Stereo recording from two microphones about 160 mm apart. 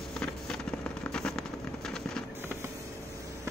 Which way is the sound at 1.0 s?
5° left (ahead or behind).